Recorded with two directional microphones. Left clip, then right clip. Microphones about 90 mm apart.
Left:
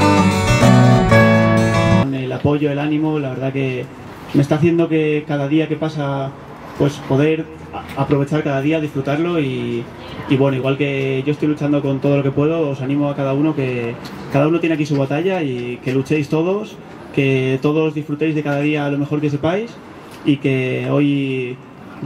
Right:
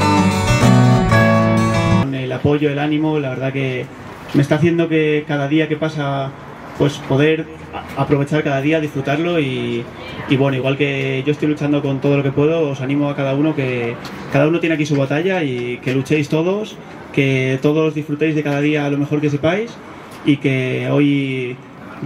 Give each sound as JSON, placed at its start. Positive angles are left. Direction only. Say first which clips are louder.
{"t": 0.0, "sound": "music", "louder": "left 1 dB", "side_deg": 0}
{"t": 3.1, "sound": "speech", "louder": "right 1 dB", "side_deg": -20}